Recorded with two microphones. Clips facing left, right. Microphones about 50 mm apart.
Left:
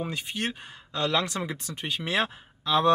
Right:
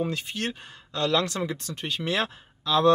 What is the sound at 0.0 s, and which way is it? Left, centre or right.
Speech, centre.